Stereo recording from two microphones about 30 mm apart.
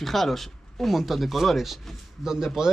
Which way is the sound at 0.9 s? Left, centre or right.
Centre.